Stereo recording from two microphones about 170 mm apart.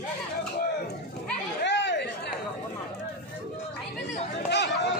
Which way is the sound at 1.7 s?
90° left.